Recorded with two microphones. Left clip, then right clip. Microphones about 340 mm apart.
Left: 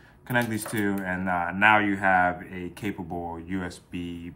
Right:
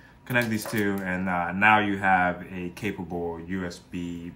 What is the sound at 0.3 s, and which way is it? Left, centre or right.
Speech, centre.